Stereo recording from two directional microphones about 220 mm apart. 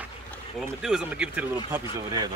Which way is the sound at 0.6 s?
5° right (ahead or behind).